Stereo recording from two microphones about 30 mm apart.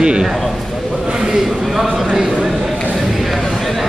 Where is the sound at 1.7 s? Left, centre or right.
Centre.